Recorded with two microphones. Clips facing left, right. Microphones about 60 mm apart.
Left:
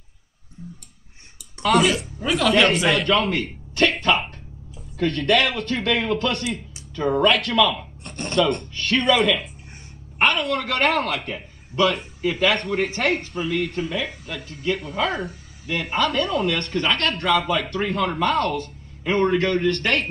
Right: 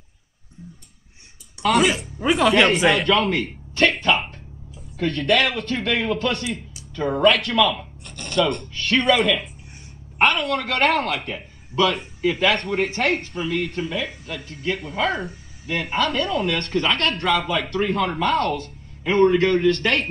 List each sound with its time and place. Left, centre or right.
2.2 s speech: centre
8.0 s a sound: left
8.7 s speech: centre